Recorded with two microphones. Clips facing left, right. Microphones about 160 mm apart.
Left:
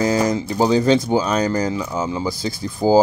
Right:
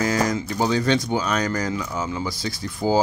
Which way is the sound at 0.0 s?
25° left (ahead or behind).